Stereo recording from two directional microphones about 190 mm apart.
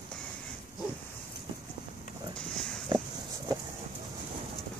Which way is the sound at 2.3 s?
5° left (ahead or behind).